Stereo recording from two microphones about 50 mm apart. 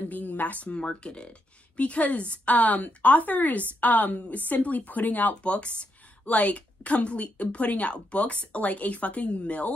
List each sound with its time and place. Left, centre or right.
0.1 s speech: left
0.7 s speech: left